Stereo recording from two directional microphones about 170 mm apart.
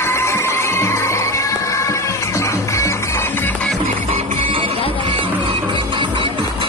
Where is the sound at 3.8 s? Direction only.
40° right (ahead or behind).